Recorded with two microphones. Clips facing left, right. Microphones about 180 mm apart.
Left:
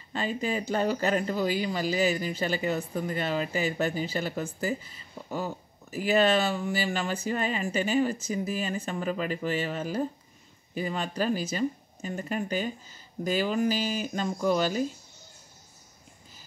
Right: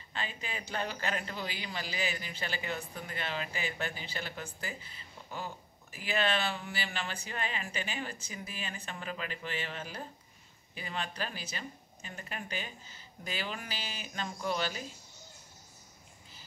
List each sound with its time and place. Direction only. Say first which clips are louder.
0.1 s speech: left 11 dB; 40° left (ahead or behind)
5.3 s speech: left 8 dB; 45° left (ahead or behind)